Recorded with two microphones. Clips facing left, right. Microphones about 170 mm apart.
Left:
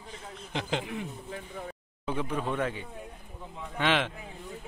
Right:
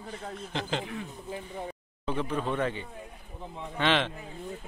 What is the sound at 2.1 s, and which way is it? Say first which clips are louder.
A man's voice: right 1 dB; 10° left (ahead or behind).